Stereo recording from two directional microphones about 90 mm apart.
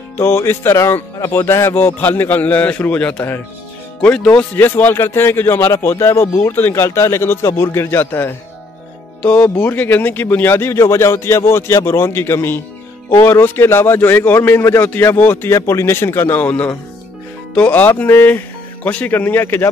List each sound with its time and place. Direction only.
0.2 s a man's voice: 25° left (ahead or behind)